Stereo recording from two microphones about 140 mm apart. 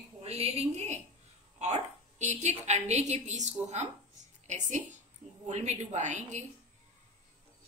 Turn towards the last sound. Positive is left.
turn(degrees=-60)  # may be behind; listen again after turning